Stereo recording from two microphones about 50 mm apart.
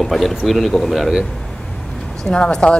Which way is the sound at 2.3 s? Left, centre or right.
Centre.